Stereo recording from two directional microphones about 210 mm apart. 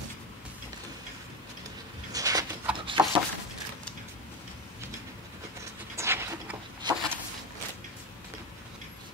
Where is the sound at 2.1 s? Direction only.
15° right (ahead or behind).